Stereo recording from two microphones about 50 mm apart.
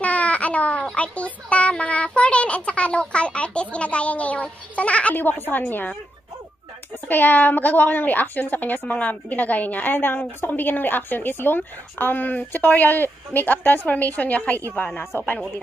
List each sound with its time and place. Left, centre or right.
0.0 s a sound: left
0.9 s speech: left
5.1 s a woman's voice: left
7.1 s a woman's voice: left